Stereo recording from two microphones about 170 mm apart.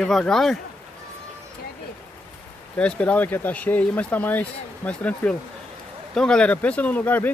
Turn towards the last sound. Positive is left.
turn(degrees=10)  # may be behind; listen again after turning